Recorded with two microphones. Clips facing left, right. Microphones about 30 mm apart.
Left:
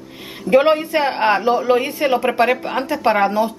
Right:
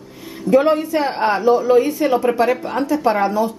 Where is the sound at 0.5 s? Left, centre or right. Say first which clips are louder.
Left 1 dB; left.